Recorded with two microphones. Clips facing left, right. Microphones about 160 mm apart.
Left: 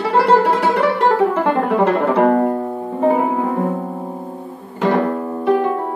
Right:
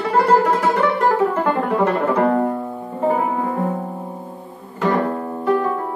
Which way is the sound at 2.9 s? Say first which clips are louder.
Left 3 dB; 20° left (ahead or behind).